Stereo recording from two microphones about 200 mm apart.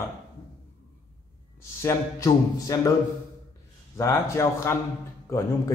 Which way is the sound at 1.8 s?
15° left (ahead or behind).